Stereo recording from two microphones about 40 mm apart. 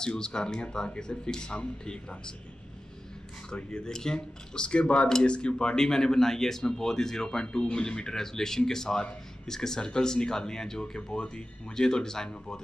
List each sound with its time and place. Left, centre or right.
0.0 s speech: centre
3.5 s speech: left